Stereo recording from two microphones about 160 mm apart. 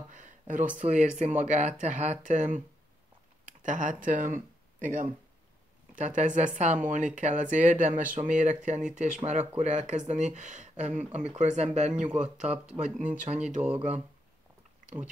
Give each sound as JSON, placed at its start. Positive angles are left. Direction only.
{"t": 0.1, "sound": "speech", "side_deg": -55}
{"t": 3.6, "sound": "speech", "side_deg": -55}